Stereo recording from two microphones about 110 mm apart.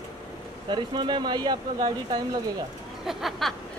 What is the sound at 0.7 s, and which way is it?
Speech, 45° right (ahead or behind).